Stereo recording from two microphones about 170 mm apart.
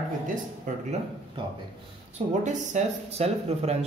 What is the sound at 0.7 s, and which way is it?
Speech, 50° right (ahead or behind).